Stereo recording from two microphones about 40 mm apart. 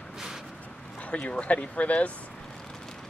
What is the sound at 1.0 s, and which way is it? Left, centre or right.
Speech, left.